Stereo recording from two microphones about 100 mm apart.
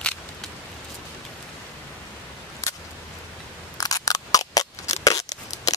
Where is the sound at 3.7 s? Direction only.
35° left (ahead or behind).